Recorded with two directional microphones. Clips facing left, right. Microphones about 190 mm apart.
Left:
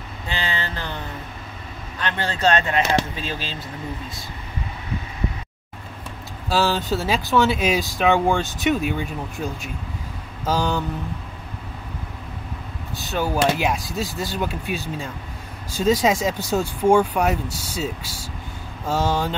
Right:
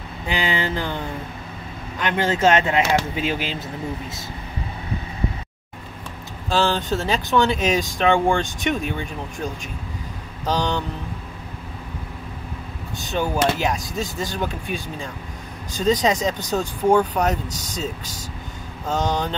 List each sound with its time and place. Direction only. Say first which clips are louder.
0.5 s speech: right 5 dB; 20° right (ahead or behind)
2.0 s speech: right 5 dB; 20° right (ahead or behind)
2.5 s speech: right 2 dB; 10° right (ahead or behind)
6.5 s speech: even; 5° left (ahead or behind)
13.0 s speech: even; 5° left (ahead or behind)